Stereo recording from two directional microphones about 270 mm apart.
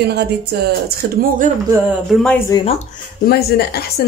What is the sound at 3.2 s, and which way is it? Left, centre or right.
Speech, left.